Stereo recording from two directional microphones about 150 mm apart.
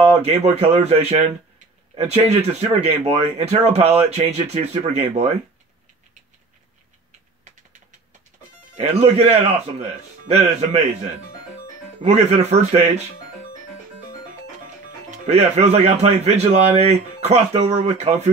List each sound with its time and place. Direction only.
0.1 s speech: 45° right (ahead or behind)
8.7 s speech: 45° right (ahead or behind)
12.0 s speech: 45° right (ahead or behind)
15.2 s speech: 50° right (ahead or behind)